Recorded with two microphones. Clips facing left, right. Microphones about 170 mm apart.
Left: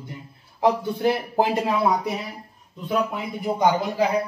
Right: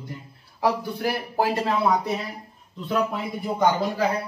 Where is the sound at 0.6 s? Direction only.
25° left (ahead or behind).